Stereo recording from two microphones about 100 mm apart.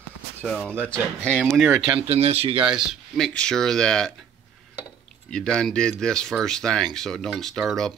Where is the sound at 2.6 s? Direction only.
5° right (ahead or behind).